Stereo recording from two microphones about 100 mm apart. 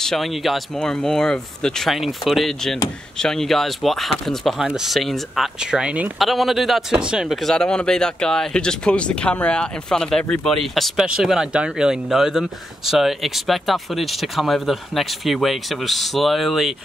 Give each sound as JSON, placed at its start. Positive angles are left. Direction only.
{"t": 0.0, "sound": "speech", "side_deg": 5}
{"t": 6.1, "sound": "speech", "side_deg": 0}